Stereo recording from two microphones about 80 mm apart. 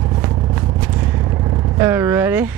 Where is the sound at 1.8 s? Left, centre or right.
Right.